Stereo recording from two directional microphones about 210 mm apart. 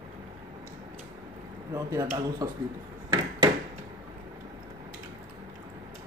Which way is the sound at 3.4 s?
20° right (ahead or behind).